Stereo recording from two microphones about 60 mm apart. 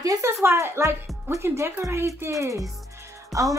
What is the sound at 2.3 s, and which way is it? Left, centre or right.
Speech, right.